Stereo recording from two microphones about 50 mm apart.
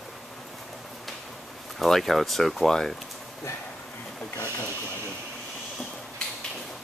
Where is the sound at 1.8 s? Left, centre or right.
Centre.